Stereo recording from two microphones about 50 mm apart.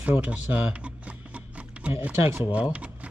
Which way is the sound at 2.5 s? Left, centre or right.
Right.